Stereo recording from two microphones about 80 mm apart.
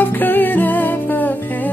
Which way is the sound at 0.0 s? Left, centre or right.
Left.